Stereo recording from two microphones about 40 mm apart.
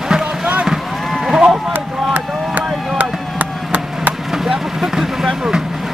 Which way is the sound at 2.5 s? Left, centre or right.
Right.